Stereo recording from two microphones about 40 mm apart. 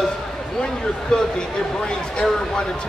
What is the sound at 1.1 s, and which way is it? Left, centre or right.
Speech, centre.